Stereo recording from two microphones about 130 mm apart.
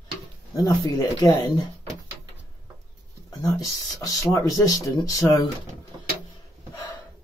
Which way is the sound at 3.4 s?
30° left (ahead or behind).